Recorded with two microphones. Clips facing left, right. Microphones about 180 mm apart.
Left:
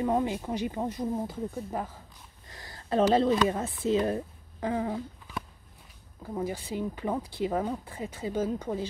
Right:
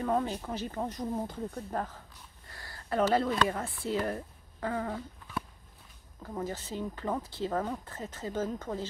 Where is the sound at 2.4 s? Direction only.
20° left (ahead or behind).